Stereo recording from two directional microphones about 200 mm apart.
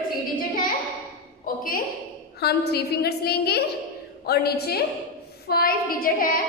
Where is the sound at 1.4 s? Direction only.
45° left (ahead or behind).